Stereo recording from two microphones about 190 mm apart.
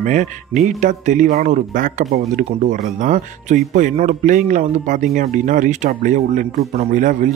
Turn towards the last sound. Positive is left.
turn(degrees=-40)  # may be behind; listen again after turning